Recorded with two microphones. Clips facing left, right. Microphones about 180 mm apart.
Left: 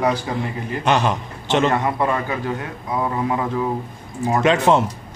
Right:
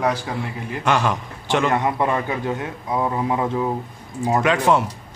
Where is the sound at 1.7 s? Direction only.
20° right (ahead or behind).